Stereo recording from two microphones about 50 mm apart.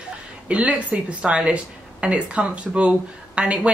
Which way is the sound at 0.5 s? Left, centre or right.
Right.